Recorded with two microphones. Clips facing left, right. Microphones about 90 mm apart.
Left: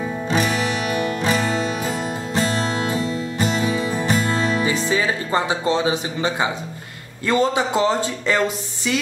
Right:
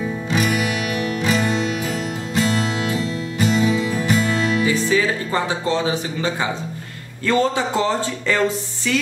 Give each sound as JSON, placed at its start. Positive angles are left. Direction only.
{"t": 0.8, "sound": "music", "side_deg": 30}
{"t": 3.9, "sound": "music", "side_deg": 30}
{"t": 4.6, "sound": "speech", "side_deg": 25}